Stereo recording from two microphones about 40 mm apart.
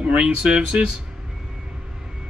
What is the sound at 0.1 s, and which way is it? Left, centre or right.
Speech, right.